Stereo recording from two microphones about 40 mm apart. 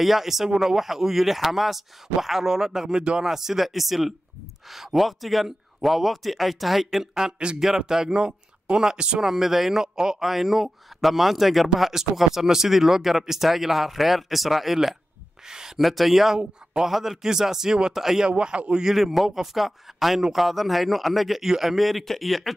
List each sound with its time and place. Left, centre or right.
0.0 s speech: centre; by 9.2 s right
9.2 s speech: centre
15.8 s speech: centre
18.2 s speech: right
18.9 s speech: centre